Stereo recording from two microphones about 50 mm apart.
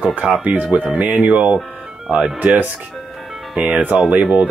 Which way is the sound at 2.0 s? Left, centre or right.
Centre.